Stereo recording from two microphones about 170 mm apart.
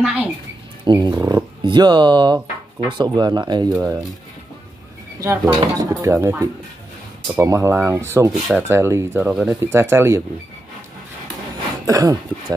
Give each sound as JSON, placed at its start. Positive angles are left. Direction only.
{"t": 0.0, "sound": "speech", "side_deg": -10}
{"t": 0.8, "sound": "speech", "side_deg": -25}
{"t": 5.2, "sound": "speech", "side_deg": -20}
{"t": 7.3, "sound": "speech", "side_deg": -15}
{"t": 11.8, "sound": "speech", "side_deg": -20}